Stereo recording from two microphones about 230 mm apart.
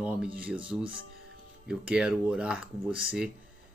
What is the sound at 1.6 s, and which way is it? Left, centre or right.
Speech, centre.